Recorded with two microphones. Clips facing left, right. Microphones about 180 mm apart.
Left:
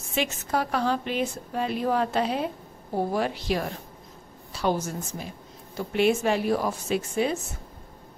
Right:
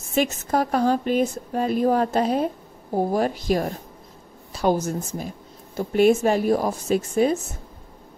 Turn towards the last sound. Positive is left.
turn(degrees=-45)  # may be behind; listen again after turning